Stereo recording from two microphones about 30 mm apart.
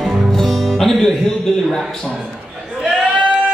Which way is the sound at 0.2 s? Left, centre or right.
Centre.